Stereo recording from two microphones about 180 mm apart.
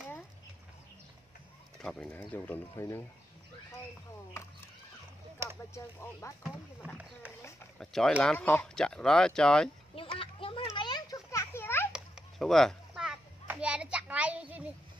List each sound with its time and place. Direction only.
1.8 s speech: 5° left (ahead or behind)
6.2 s speech: 15° left (ahead or behind)
7.8 s speech: 5° left (ahead or behind)
9.9 s children playing: 30° left (ahead or behind); by 11.9 s 10° left (ahead or behind)
11.9 s children playing: centre (ahead or behind)